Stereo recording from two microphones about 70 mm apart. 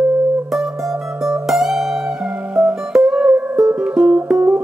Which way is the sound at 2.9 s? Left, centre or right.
Centre.